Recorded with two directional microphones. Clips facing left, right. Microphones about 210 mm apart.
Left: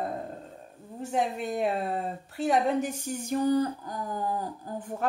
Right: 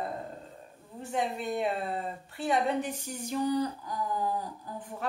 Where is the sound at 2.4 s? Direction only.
45° left (ahead or behind).